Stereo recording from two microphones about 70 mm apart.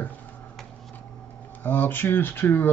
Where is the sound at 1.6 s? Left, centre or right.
Left.